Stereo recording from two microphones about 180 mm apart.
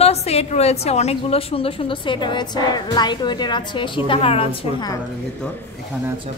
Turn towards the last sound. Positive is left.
turn(degrees=30)  # may be behind; listen again after turning